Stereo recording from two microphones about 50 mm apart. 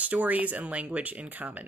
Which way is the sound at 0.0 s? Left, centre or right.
Right.